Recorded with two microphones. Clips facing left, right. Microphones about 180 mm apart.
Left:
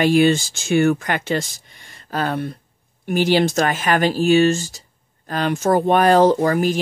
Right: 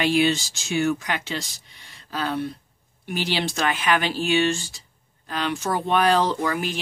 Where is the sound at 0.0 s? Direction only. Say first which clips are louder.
Left 6 dB; 50° left (ahead or behind).